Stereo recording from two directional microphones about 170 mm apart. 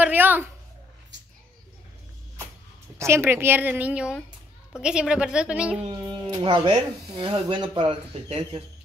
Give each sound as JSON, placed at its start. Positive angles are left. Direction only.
{"t": 0.0, "sound": "a woman's voice", "side_deg": -10}
{"t": 3.0, "sound": "a woman's voice", "side_deg": -15}
{"t": 5.8, "sound": "speech", "side_deg": -30}